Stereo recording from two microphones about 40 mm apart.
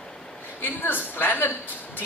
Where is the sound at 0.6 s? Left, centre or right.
Left.